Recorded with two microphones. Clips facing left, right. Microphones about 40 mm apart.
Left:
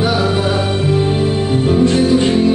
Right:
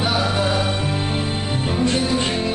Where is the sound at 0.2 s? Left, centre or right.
Centre.